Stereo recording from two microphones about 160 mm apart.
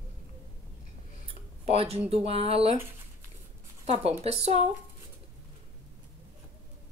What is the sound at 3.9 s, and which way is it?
Speech, 40° right (ahead or behind).